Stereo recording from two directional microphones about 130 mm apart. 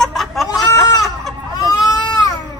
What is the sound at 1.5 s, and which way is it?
Baby cry, 30° left (ahead or behind).